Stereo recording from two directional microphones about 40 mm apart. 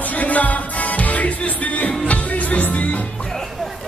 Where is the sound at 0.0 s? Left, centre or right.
Left.